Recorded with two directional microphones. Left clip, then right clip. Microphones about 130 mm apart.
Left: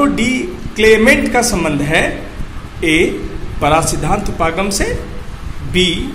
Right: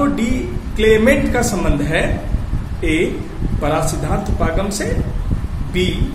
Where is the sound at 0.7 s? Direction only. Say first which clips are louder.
Left 4 dB; 45° left (ahead or behind).